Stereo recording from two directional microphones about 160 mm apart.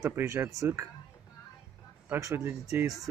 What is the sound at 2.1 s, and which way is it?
Speech, 15° right (ahead or behind).